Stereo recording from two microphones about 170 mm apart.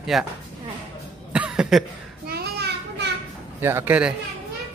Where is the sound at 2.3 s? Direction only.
75° right (ahead or behind).